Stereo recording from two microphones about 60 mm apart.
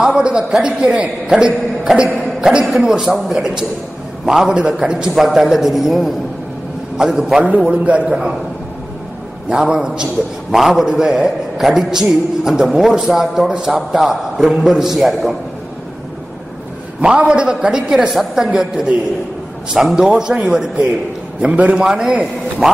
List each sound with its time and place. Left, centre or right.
0.0 s a woman's voice: centre
2.0 s a man's voice: centre
7.4 s a man's voice: right
8.1 s a woman's voice: centre
9.5 s a woman's voice: centre
17.0 s a woman's voice: centre
21.4 s a man's voice: right